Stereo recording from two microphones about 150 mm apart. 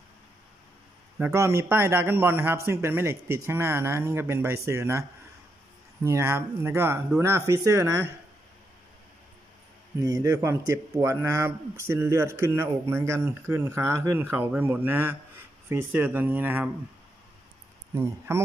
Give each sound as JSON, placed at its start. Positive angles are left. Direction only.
{"t": 1.1, "sound": "speech", "side_deg": -15}
{"t": 6.0, "sound": "speech", "side_deg": -20}
{"t": 9.9, "sound": "a man's voice", "side_deg": -20}
{"t": 17.9, "sound": "speech", "side_deg": -15}